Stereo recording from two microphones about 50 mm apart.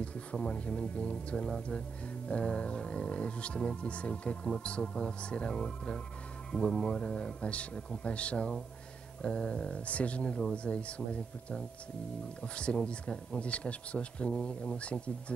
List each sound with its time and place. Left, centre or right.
0.0 s speech: left
12.5 s speech: left